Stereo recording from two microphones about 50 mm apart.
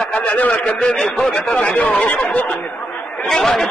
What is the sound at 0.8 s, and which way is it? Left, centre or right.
A man's voice, centre.